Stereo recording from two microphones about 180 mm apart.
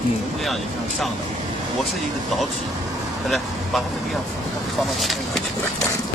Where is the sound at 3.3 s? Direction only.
Centre (ahead or behind).